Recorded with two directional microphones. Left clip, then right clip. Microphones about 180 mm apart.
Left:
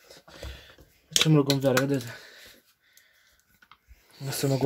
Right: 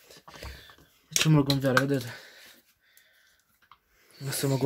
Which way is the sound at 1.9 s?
20° right (ahead or behind).